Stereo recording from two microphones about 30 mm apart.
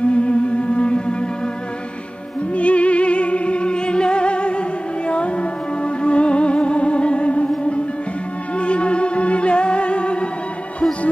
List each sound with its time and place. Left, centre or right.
0.0 s music: left
2.5 s music: left